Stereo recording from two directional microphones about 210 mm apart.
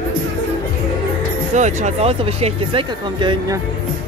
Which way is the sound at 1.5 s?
35° right (ahead or behind).